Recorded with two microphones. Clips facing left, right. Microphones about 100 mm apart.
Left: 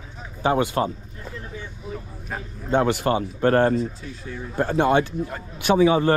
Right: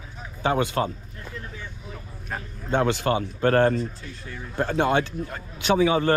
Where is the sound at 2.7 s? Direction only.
40° left (ahead or behind).